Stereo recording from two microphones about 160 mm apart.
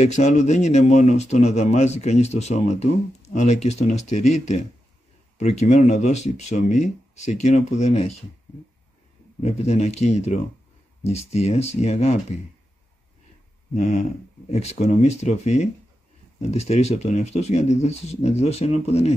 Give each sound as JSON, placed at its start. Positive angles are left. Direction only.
{"t": 0.0, "sound": "speech", "side_deg": 45}
{"t": 9.4, "sound": "speech", "side_deg": 45}
{"t": 13.7, "sound": "speech", "side_deg": 50}